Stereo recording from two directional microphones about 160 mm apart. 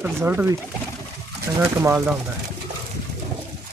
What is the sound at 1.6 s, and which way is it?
Speech, 20° right (ahead or behind).